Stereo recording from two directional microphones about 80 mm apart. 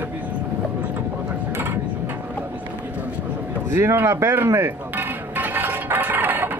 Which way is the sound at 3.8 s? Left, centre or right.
Right.